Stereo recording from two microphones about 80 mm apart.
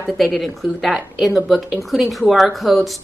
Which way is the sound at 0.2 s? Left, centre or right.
Centre.